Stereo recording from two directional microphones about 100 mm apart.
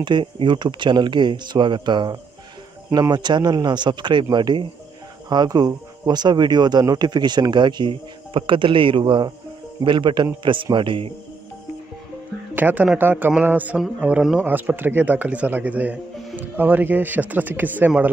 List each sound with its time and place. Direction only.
0.0 s speech: 55° right (ahead or behind)
12.5 s speech: 15° right (ahead or behind)